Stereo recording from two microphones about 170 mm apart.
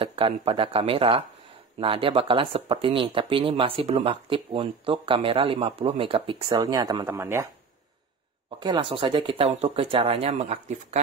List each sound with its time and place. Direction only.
0.0 s speech: 35° right (ahead or behind); by 7.4 s 15° right (ahead or behind)
8.5 s speech: 25° right (ahead or behind)